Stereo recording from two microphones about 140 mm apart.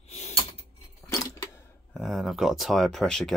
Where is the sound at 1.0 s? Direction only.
20° left (ahead or behind).